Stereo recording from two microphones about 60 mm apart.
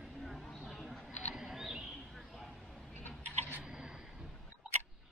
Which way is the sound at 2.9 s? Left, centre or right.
Left.